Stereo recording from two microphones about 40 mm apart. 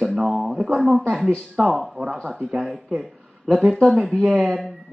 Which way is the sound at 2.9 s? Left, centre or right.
Centre.